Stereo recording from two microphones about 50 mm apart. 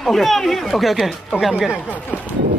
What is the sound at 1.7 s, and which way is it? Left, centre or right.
Speech, left.